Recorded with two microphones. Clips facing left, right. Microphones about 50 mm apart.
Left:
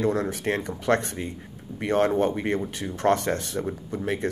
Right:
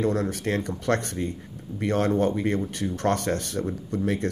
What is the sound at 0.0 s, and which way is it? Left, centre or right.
Speech, centre.